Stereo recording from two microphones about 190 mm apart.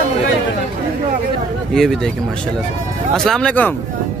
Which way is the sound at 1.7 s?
Centre (ahead or behind).